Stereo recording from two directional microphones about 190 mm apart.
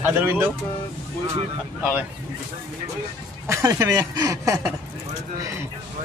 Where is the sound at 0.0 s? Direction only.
10° right (ahead or behind).